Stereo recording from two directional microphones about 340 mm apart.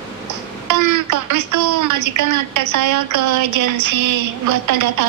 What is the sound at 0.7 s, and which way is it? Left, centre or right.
Speech, right.